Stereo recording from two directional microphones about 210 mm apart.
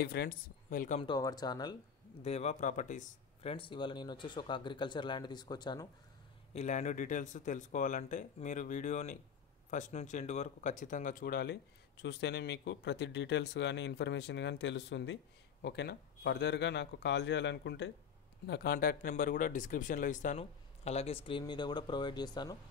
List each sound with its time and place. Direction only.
0.0 s speech: 50° left (ahead or behind)
1.0 s speech: 20° left (ahead or behind)
2.2 s speech: 30° left (ahead or behind)
3.5 s speech: 25° left (ahead or behind)
6.5 s speech: 35° left (ahead or behind)